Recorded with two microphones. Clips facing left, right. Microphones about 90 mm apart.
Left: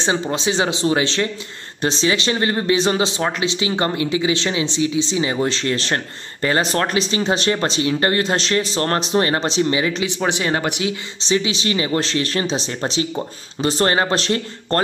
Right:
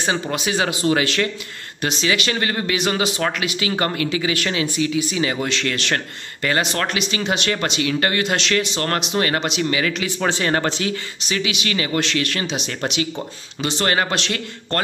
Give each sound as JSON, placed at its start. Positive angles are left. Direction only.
{"t": 0.0, "sound": "speech", "side_deg": 25}
{"t": 11.1, "sound": "speech", "side_deg": 30}